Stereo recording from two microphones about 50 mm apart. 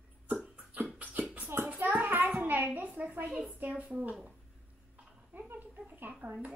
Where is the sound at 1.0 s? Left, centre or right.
Right.